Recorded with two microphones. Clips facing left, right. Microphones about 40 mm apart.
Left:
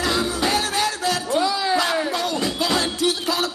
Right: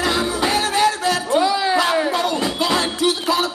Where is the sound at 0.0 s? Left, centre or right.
Right.